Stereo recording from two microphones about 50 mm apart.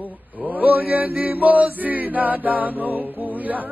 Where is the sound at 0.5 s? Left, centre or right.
Right.